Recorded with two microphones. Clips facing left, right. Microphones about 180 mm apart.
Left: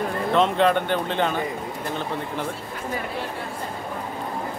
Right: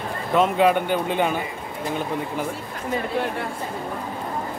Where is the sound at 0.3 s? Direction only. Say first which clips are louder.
Right 2 dB; 10° right (ahead or behind).